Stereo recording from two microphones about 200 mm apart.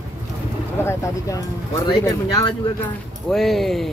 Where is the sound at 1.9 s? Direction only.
20° left (ahead or behind).